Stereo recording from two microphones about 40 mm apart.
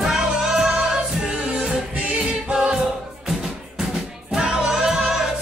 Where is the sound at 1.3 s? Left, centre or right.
Right.